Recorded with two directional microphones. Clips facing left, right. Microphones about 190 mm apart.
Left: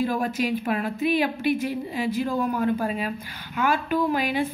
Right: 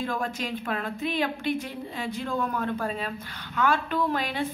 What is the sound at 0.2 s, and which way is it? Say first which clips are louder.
Speech: left 6 dB; 10° left (ahead or behind).